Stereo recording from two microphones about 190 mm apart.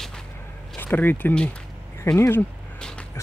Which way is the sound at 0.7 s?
10° left (ahead or behind).